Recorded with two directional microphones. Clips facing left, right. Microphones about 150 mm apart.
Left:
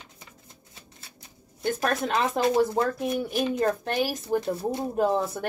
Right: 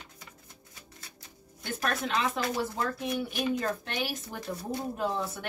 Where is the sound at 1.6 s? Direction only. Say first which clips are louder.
Left 6 dB; 40° left (ahead or behind).